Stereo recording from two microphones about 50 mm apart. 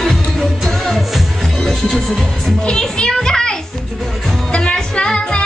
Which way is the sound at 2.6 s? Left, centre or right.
Centre.